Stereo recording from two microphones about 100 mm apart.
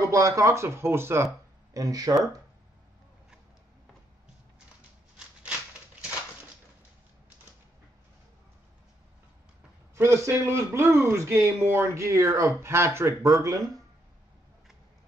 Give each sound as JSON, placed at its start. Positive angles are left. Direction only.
{"t": 0.0, "sound": "a man's voice", "side_deg": -30}
{"t": 1.7, "sound": "speech", "side_deg": -35}
{"t": 9.9, "sound": "a man's voice", "side_deg": -25}